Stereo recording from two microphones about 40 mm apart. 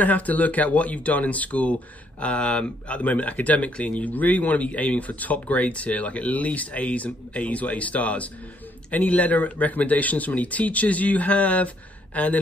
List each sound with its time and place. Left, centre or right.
0.0 s speech: left